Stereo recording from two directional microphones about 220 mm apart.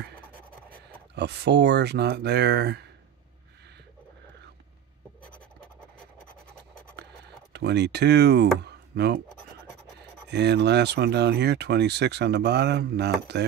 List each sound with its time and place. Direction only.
1.1 s speech: 50° right (ahead or behind)
7.5 s speech: 50° right (ahead or behind)
10.3 s speech: 50° right (ahead or behind)